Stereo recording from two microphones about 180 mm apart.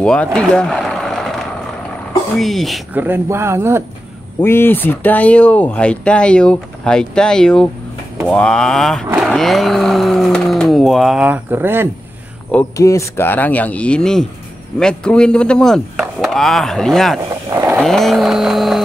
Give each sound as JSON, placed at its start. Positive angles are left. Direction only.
{"t": 0.0, "sound": "a sound", "side_deg": 5}
{"t": 2.3, "sound": "speech", "side_deg": 0}
{"t": 4.4, "sound": "speech", "side_deg": 10}
{"t": 12.7, "sound": "speech", "side_deg": 15}
{"t": 17.5, "sound": "vehicle", "side_deg": -20}
{"t": 17.7, "sound": "speech", "side_deg": 0}